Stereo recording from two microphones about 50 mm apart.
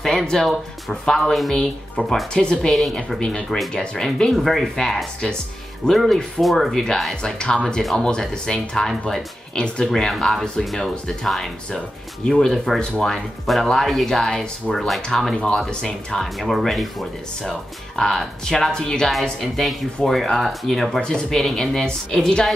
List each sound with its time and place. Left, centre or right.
0.0 s speech: centre
1.6 s speech: centre
2.7 s speech: centre
3.2 s speech: centre
4.3 s speech: centre
7.3 s speech: centre
17.5 s speech: centre
19.4 s speech: centre